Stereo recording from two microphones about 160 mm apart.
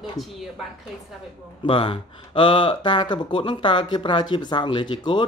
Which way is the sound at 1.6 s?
35° left (ahead or behind).